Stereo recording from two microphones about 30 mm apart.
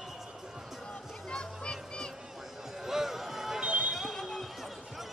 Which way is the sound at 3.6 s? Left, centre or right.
Right.